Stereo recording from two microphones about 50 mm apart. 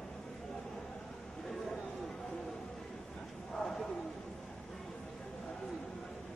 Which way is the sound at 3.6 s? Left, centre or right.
Centre.